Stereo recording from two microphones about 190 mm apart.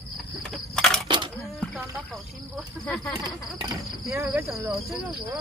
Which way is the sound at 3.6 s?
15° right (ahead or behind).